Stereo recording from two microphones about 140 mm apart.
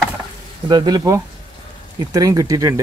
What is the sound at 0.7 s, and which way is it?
Speech, 30° right (ahead or behind).